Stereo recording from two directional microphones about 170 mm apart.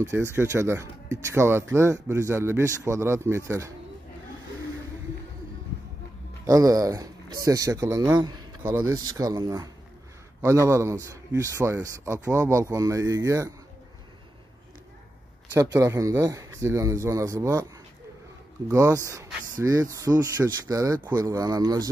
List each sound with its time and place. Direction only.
0.1 s speech: 15° right (ahead or behind)
6.4 s speech: 20° right (ahead or behind)
10.7 s speech: 15° right (ahead or behind)
15.5 s speech: 20° right (ahead or behind)
18.7 s speech: 15° right (ahead or behind)